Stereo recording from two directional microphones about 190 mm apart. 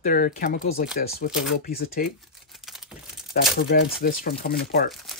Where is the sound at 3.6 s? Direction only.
60° left (ahead or behind).